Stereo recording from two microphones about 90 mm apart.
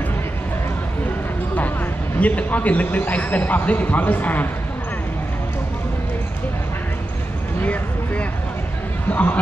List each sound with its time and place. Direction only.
2.1 s a man's voice: 15° left (ahead or behind)
7.6 s a sound: 15° left (ahead or behind)
9.1 s speech: 20° left (ahead or behind)